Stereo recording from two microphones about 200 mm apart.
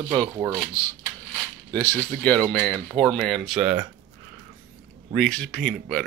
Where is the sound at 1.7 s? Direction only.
10° left (ahead or behind).